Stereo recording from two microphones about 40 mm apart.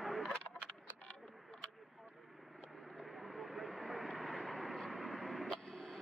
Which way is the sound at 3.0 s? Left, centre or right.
Centre.